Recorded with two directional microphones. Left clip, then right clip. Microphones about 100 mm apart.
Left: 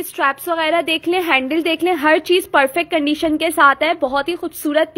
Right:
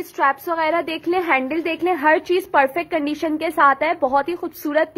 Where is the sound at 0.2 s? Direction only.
30° left (ahead or behind).